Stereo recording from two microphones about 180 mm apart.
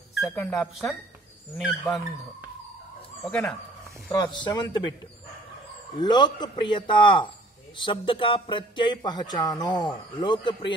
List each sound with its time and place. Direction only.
0.1 s speech: 5° left (ahead or behind)
3.3 s speech: 5° left (ahead or behind)
4.1 s speech: 25° left (ahead or behind)
5.9 s speech: 25° left (ahead or behind)